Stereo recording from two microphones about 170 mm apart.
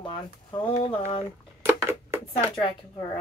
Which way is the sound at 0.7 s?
40° left (ahead or behind).